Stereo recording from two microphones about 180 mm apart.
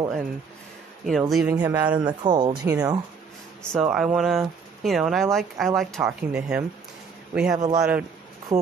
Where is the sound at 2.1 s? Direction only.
25° right (ahead or behind).